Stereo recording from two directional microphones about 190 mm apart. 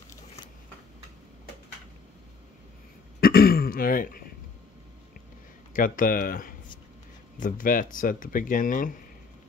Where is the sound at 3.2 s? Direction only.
55° left (ahead or behind).